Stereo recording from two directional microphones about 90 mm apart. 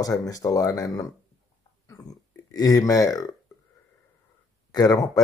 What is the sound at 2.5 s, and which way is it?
Speech, 40° left (ahead or behind).